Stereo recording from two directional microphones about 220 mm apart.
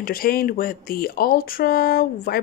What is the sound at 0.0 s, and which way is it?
Speech, 40° left (ahead or behind).